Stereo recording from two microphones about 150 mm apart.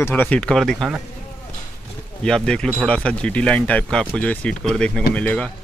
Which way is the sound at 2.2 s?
5° left (ahead or behind).